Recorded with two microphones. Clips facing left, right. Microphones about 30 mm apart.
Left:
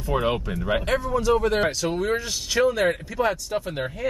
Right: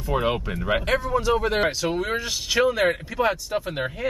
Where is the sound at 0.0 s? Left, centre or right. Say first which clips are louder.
Even; centre.